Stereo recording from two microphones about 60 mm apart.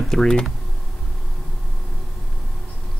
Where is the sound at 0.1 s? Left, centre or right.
Centre.